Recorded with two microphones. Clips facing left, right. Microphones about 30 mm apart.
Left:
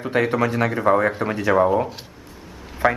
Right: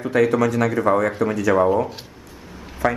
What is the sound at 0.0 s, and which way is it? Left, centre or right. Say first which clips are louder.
Speech: right 2 dB; left.